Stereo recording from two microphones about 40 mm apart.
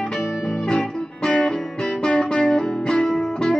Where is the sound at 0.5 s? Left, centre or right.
Centre.